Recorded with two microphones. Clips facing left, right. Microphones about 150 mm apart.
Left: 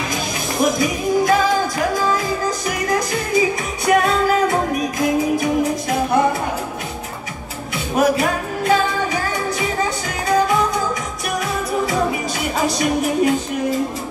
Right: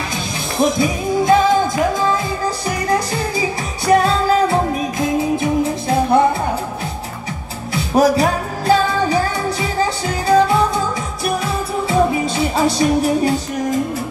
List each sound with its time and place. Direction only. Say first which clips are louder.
0.6 s music: right 2 dB; 25° right (ahead or behind)
2.9 s music: even; 30° right (ahead or behind)
7.7 s music: right 3 dB; 35° right (ahead or behind)
11.9 s music: right 4 dB; 30° right (ahead or behind)